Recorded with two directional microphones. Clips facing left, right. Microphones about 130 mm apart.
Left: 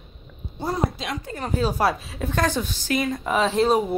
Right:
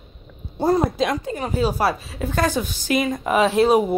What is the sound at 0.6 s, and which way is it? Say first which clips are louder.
Speech: right 8 dB; 45° right (ahead or behind).